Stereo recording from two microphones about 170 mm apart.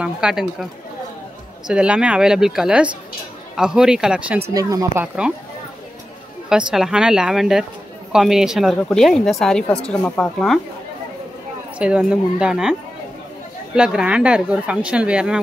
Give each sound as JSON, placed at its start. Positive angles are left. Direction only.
{"t": 0.0, "sound": "speech", "side_deg": -5}
{"t": 1.7, "sound": "speech", "side_deg": -5}
{"t": 4.6, "sound": "speech", "side_deg": -20}
{"t": 5.0, "sound": "speech", "side_deg": -5}
{"t": 6.7, "sound": "speech", "side_deg": -5}
{"t": 11.8, "sound": "speech", "side_deg": -5}
{"t": 13.7, "sound": "speech", "side_deg": -5}